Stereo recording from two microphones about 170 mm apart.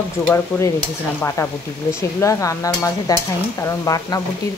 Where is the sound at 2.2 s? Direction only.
20° left (ahead or behind).